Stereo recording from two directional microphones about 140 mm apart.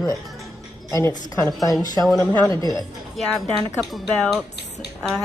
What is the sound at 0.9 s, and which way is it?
Speech, 20° left (ahead or behind).